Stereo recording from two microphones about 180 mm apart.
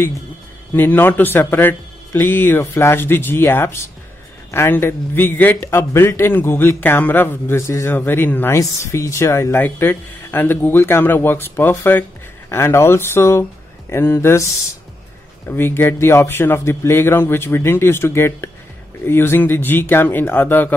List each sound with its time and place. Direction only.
0.7 s a man's voice: 10° left (ahead or behind)